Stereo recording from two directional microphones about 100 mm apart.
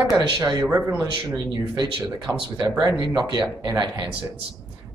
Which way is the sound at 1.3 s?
45° right (ahead or behind).